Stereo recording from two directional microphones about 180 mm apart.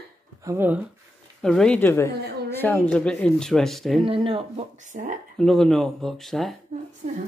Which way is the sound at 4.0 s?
30° right (ahead or behind).